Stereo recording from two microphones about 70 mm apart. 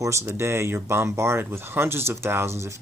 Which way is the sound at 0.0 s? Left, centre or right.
Right.